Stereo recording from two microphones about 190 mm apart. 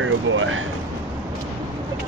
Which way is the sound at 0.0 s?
90° right.